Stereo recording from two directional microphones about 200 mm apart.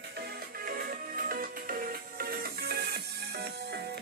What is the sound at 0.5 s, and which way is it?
Music, 45° right (ahead or behind).